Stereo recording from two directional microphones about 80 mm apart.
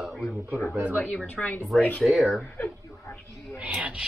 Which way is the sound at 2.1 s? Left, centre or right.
Centre.